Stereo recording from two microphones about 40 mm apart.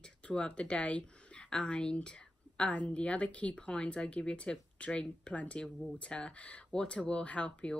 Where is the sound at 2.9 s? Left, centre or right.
Left.